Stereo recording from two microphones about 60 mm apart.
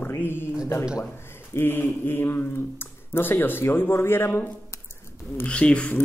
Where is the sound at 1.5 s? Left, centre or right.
Left.